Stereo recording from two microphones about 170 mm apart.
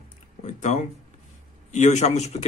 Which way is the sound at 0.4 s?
45° left (ahead or behind).